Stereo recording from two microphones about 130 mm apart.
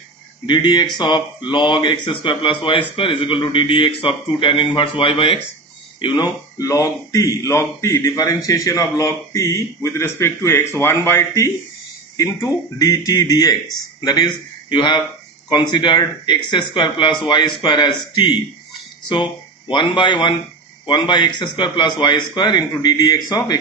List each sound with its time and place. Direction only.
0.5 s a man's voice: 35° left (ahead or behind)
19.7 s a man's voice: 40° left (ahead or behind)